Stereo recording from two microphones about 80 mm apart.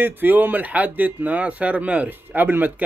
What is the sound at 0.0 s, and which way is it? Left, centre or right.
Speech, right.